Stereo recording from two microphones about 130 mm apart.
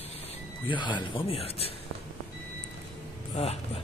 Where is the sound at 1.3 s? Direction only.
50° left (ahead or behind).